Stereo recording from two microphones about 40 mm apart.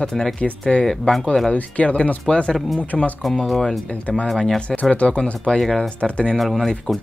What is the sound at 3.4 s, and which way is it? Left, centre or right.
Speech, centre.